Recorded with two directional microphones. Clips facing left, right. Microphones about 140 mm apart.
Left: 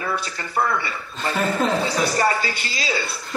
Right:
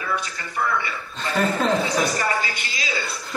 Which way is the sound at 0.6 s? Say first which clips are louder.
Left 3 dB; 40° left (ahead or behind).